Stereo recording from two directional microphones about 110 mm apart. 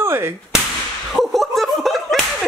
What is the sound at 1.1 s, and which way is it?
Slap, centre (ahead or behind).